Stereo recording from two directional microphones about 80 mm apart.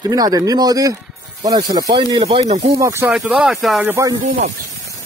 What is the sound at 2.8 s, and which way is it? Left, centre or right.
Speech, right.